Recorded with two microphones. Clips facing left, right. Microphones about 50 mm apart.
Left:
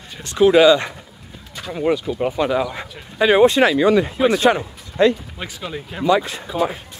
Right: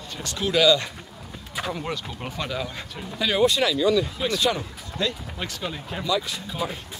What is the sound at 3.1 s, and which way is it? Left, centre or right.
Speech, left.